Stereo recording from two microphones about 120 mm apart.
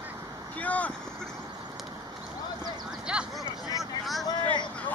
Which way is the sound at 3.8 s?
Centre (ahead or behind).